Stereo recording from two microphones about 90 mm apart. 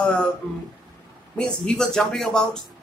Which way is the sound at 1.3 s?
5° left (ahead or behind).